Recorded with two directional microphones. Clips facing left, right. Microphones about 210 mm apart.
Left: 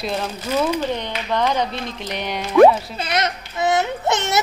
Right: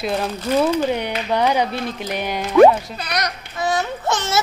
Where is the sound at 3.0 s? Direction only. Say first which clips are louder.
Left 3 dB; 25° left (ahead or behind).